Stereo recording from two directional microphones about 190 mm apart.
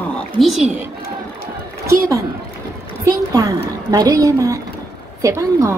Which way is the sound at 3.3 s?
20° right (ahead or behind).